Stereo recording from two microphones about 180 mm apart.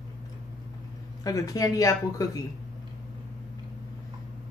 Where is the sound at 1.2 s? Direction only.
20° left (ahead or behind).